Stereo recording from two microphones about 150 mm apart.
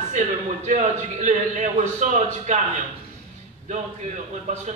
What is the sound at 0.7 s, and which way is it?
A man's voice, 50° right (ahead or behind).